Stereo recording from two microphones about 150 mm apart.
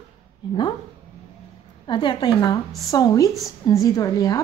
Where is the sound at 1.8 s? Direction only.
30° left (ahead or behind).